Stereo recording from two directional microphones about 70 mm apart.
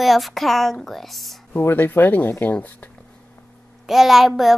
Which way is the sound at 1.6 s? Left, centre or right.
Left.